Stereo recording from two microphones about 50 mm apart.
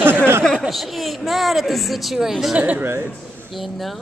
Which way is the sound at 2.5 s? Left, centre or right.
Right.